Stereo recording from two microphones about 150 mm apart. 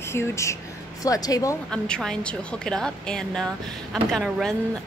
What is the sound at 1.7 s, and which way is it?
A woman's voice, 5° left (ahead or behind).